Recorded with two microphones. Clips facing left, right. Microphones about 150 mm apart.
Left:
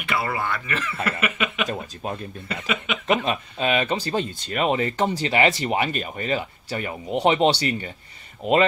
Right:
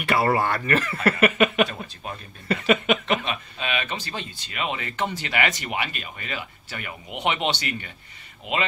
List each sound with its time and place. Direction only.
0.0 s speech: 45° right (ahead or behind)
2.0 s speech: 40° left (ahead or behind)
2.4 s speech: 50° right (ahead or behind)
3.1 s speech: 40° left (ahead or behind)